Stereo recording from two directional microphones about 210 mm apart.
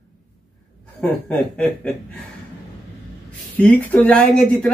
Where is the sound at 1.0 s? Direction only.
5° left (ahead or behind).